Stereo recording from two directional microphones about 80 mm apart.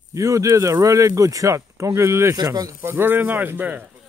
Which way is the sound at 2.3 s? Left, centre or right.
Right.